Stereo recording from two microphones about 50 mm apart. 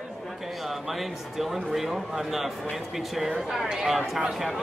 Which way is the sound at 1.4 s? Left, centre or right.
Centre.